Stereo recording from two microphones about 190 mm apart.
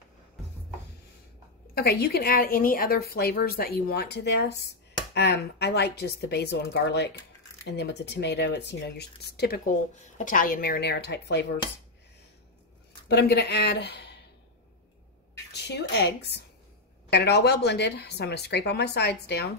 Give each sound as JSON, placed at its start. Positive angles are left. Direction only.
{"t": 1.8, "sound": "a woman's voice", "side_deg": 55}
{"t": 10.1, "sound": "a woman's voice", "side_deg": 45}
{"t": 13.1, "sound": "a woman's voice", "side_deg": 60}
{"t": 15.5, "sound": "a woman's voice", "side_deg": 60}